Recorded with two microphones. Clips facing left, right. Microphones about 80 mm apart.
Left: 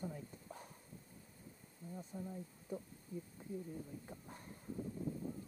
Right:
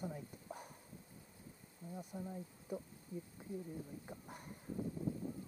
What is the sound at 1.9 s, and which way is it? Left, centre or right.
Speech, centre.